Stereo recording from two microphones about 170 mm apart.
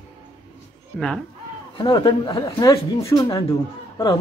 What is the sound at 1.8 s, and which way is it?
Speech, 25° left (ahead or behind).